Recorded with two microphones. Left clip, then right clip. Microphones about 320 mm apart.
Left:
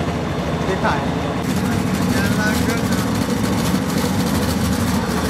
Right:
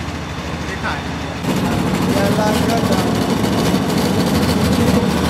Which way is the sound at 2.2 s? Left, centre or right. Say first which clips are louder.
Right 4 dB; centre.